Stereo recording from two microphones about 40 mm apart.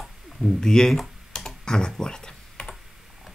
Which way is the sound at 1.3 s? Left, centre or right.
Centre.